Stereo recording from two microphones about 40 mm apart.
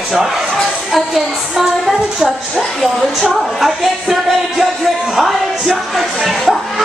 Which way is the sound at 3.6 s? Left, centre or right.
Centre.